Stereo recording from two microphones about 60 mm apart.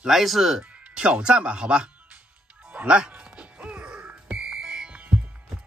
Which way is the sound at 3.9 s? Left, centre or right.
Right.